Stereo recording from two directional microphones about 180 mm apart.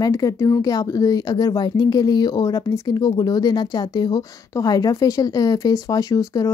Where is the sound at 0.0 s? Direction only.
20° left (ahead or behind).